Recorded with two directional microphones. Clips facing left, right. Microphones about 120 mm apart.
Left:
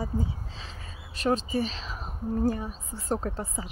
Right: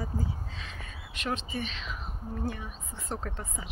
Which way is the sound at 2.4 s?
35° left (ahead or behind).